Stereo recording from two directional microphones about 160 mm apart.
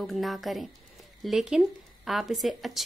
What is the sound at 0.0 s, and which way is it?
Speech, centre (ahead or behind).